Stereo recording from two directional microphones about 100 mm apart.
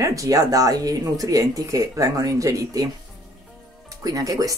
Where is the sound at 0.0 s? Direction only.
35° right (ahead or behind).